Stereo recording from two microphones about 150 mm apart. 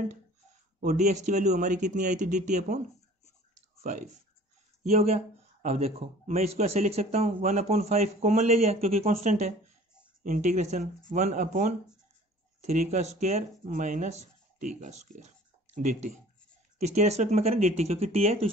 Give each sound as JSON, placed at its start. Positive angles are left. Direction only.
{"t": 0.7, "sound": "speech", "side_deg": -55}
{"t": 3.8, "sound": "a man's voice", "side_deg": -55}